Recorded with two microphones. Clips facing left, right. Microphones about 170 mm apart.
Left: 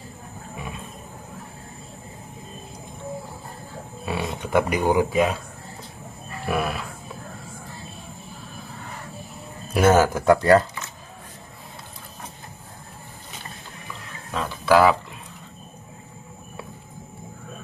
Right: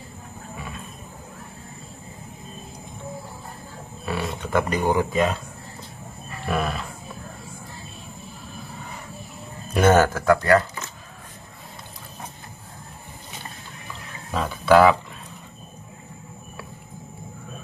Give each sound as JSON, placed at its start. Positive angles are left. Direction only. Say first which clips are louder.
{"t": 4.0, "sound": "speech", "louder": "even", "side_deg": 15}
{"t": 6.4, "sound": "livestock", "louder": "even", "side_deg": 5}
{"t": 9.8, "sound": "speech", "louder": "even", "side_deg": 5}
{"t": 10.1, "sound": "speech", "louder": "left 2 dB", "side_deg": 25}
{"t": 14.3, "sound": "speech", "louder": "right 2 dB", "side_deg": 0}